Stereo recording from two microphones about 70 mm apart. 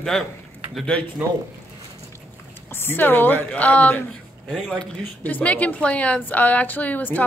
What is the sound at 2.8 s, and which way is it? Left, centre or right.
A woman's voice, left.